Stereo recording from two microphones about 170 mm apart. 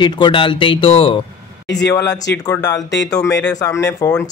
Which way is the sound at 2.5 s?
20° left (ahead or behind).